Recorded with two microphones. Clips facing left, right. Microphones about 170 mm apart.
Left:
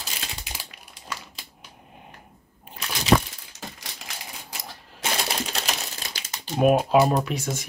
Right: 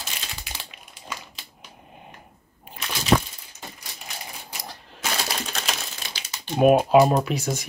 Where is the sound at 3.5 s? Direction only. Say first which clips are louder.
Left 2 dB; 90° left.